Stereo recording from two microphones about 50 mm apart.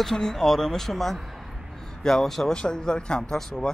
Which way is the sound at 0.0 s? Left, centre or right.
Centre.